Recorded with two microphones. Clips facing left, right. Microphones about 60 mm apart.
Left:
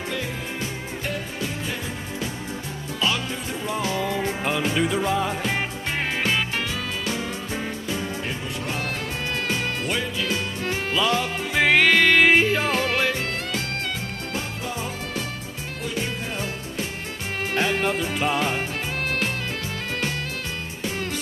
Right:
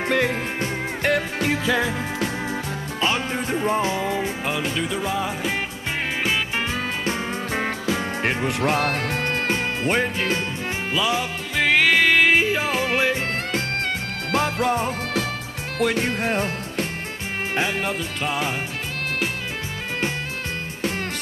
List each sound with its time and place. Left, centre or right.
0.1 s music: right
3.0 s music: right
3.9 s music: centre
4.2 s music: centre
7.8 s music: right
9.5 s music: right
10.9 s music: centre
11.5 s music: centre
12.9 s music: centre
13.5 s music: right
14.3 s music: right
14.7 s music: right
15.8 s music: right
17.6 s music: centre